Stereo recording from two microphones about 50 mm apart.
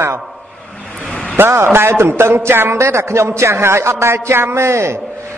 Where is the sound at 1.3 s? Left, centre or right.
Right.